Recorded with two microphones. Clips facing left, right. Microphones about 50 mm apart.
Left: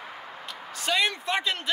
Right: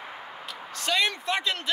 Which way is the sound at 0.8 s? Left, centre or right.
Centre.